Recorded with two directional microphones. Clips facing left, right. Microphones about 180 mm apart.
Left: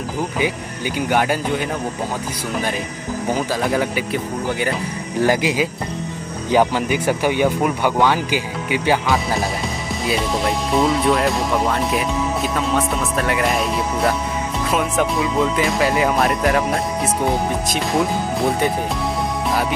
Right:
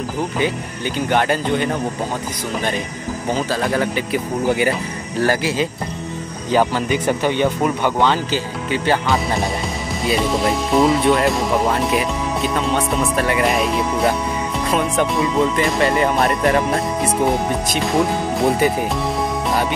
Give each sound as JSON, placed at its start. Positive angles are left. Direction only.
{"t": 0.4, "sound": "speech", "side_deg": 10}
{"t": 3.3, "sound": "speech", "side_deg": 10}
{"t": 4.1, "sound": "speech", "side_deg": -5}
{"t": 5.2, "sound": "speech", "side_deg": 15}
{"t": 9.0, "sound": "speech", "side_deg": 0}